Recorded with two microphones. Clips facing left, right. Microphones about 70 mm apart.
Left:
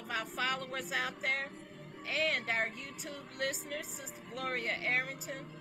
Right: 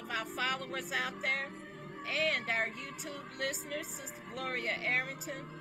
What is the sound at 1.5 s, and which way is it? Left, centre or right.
Music, right.